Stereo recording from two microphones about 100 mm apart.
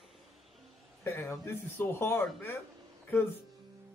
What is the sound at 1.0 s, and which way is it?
Speech, 20° left (ahead or behind).